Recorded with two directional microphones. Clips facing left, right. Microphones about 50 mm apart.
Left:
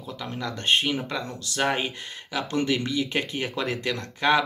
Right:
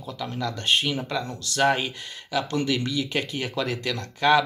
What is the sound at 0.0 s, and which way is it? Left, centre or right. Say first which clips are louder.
Speech: right 2 dB; left.